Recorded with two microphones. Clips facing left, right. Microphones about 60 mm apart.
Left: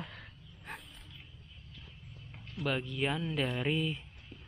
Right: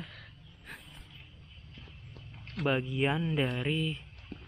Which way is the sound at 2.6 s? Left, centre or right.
Centre.